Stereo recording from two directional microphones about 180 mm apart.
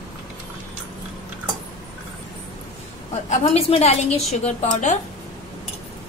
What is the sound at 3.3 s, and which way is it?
A woman's voice, 35° left (ahead or behind).